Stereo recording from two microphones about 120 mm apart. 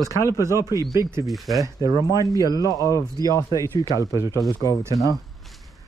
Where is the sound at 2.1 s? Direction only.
30° left (ahead or behind).